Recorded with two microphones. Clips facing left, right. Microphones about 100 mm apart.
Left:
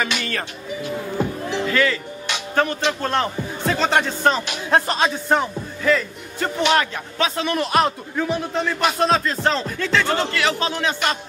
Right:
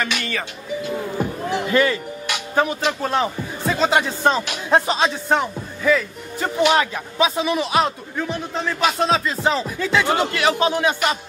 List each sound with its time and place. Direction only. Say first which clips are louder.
0.0 s speech: even; centre (ahead or behind)
1.5 s speech: right 3 dB; 20° right (ahead or behind)